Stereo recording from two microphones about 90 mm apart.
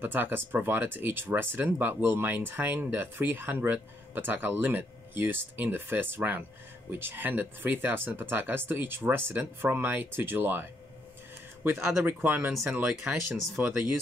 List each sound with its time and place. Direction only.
0.0 s speech: 20° right (ahead or behind)
12.0 s speech: 20° right (ahead or behind)